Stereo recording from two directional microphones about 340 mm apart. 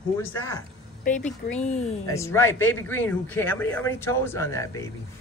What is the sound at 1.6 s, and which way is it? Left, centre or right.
Speech, centre.